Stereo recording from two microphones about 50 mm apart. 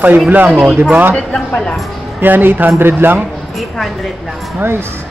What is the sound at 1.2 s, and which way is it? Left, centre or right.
Speech, centre.